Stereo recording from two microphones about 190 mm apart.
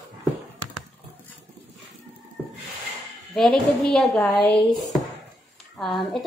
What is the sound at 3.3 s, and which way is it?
A woman's voice, centre (ahead or behind).